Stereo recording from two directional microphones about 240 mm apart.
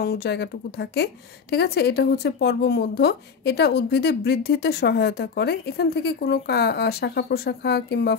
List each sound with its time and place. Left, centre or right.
0.0 s a woman's voice: left